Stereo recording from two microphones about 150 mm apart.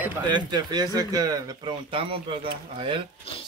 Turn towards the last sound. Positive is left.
turn(degrees=-35)  # may be behind; listen again after turning